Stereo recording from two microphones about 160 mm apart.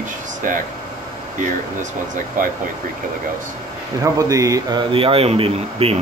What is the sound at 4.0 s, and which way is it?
Speech, 20° right (ahead or behind).